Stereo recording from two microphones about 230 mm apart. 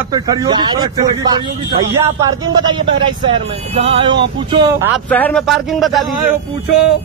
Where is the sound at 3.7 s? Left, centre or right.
Right.